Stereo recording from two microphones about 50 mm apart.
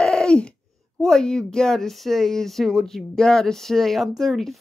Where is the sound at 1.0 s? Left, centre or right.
Centre.